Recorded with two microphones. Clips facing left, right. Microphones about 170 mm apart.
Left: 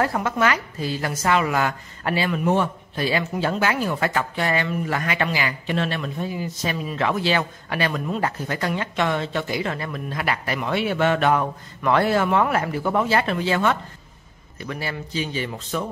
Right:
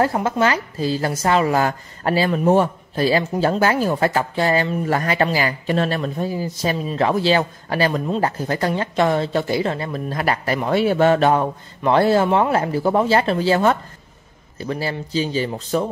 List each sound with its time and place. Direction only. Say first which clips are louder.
0.0 s a woman's voice: right 3 dB; 30° right (ahead or behind)